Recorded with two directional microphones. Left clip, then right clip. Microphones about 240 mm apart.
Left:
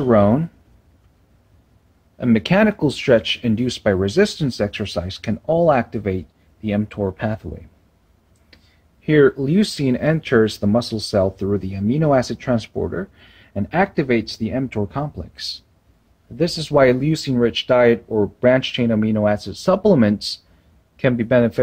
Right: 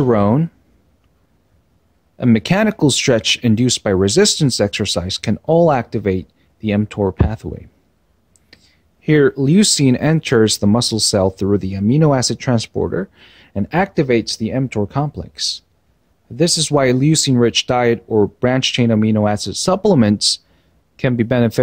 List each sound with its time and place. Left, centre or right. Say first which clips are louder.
0.0 s speech: even; right
2.1 s speech: right 1 dB; right
9.0 s speech: right 1 dB; right